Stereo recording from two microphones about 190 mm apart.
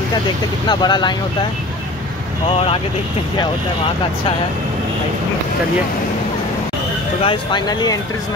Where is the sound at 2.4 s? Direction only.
30° left (ahead or behind).